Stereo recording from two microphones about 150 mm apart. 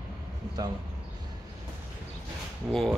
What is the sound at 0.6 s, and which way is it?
Speech, 25° right (ahead or behind).